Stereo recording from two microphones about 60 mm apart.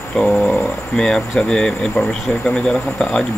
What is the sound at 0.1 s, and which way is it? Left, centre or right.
Speech, centre.